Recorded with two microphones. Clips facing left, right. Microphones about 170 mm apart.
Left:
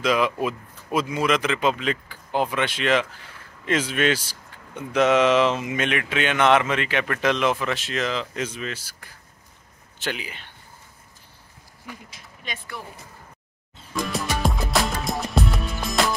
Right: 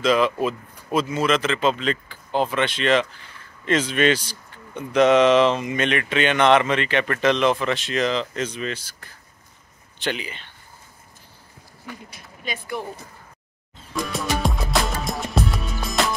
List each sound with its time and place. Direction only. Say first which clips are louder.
0.0 s speech: right 3 dB; 10° left (ahead or behind)
11.9 s speech: right 2 dB; 10° left (ahead or behind)
12.7 s speech: right 10 dB; 20° right (ahead or behind)
14.0 s music: right 1 dB; centre (ahead or behind)